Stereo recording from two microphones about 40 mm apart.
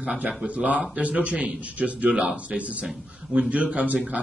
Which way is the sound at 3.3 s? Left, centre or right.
Right.